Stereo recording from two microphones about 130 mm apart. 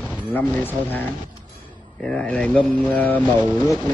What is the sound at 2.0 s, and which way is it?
Speech, 10° left (ahead or behind).